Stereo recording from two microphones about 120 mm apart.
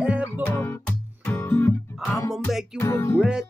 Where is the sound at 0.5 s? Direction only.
20° left (ahead or behind).